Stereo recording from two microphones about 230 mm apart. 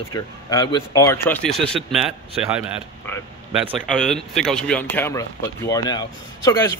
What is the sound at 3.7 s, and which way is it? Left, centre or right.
Speech, centre.